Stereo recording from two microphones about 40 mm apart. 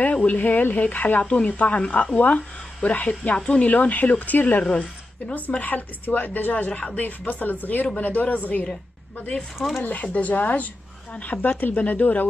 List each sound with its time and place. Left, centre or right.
0.0 s a sound: left
0.4 s speech: left
4.4 s a woman's voice: left
9.8 s speech: left